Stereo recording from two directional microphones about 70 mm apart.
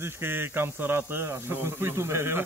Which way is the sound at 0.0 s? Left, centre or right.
Right.